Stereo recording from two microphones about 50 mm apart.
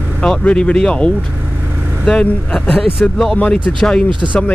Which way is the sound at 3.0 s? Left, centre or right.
Left.